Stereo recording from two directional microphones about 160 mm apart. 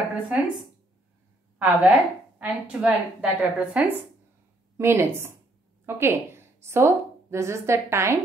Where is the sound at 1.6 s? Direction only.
10° right (ahead or behind).